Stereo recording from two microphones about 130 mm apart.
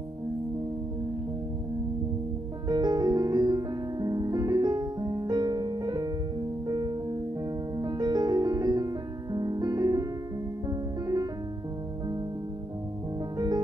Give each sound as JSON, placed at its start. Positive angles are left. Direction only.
{"t": 2.7, "sound": "music", "side_deg": -30}